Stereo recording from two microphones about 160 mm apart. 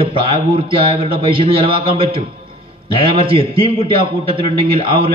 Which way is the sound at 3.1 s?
35° right (ahead or behind).